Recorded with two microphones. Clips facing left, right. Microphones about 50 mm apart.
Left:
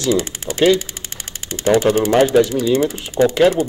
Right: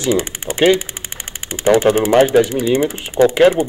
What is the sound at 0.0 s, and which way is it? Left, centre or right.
Speech, right.